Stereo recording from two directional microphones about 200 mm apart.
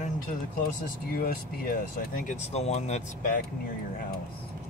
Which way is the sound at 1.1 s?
45° left (ahead or behind).